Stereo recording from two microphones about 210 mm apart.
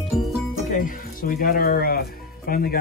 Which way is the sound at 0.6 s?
40° left (ahead or behind).